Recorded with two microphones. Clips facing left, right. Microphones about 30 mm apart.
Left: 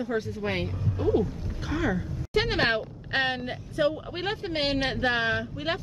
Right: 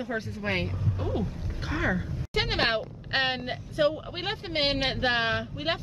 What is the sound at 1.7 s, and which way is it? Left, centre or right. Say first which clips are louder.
Speech: left 1 dB; centre.